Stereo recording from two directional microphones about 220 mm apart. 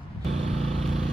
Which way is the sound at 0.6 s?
Centre (ahead or behind).